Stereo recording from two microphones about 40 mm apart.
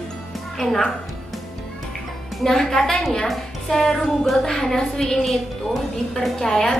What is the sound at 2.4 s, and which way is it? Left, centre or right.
Speech, centre.